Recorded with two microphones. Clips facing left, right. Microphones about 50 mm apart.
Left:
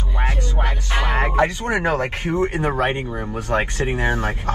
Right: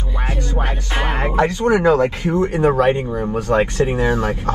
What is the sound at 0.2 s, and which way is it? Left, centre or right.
Music, left.